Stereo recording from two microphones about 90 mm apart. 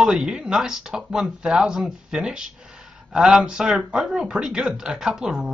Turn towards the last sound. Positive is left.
turn(degrees=-5)  # may be behind; listen again after turning